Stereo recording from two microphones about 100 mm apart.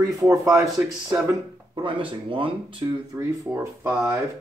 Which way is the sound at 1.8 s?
60° right (ahead or behind).